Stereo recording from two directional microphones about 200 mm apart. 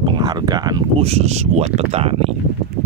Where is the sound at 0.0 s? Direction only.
20° right (ahead or behind).